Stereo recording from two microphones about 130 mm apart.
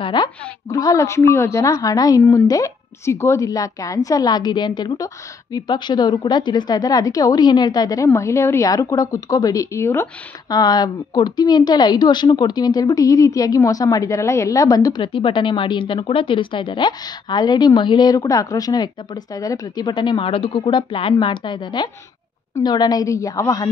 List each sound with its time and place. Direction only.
0.0 s a woman's voice: 35° left (ahead or behind)
10.5 s a woman's voice: 30° left (ahead or behind)